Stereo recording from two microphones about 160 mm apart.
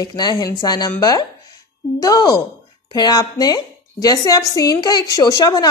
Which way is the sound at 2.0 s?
25° left (ahead or behind).